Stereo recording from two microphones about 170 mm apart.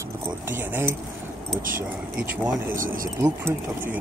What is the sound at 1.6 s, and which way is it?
Speech, 55° right (ahead or behind).